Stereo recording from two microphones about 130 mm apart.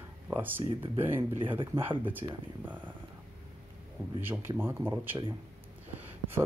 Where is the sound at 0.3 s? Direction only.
15° right (ahead or behind).